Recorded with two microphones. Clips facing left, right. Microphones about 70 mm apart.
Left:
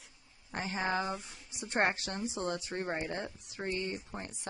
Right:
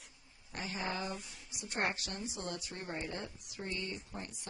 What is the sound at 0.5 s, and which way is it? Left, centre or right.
Speech, left.